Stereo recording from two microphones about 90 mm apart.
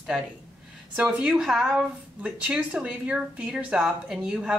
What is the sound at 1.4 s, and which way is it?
Speech, 5° right (ahead or behind).